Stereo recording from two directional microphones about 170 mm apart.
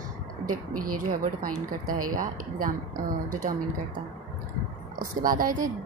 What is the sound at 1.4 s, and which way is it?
A woman's voice, 55° right (ahead or behind).